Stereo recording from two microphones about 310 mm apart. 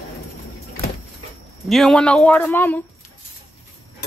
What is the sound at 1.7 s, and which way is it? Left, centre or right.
Speech, centre.